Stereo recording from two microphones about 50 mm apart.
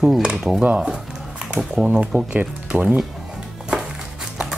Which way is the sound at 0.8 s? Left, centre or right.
Centre.